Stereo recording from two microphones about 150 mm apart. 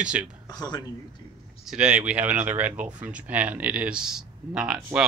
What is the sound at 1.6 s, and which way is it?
Speech, 5° right (ahead or behind).